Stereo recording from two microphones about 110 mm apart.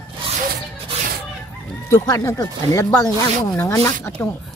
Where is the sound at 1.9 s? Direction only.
25° left (ahead or behind).